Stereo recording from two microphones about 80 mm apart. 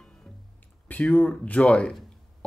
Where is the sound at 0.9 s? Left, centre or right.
Centre.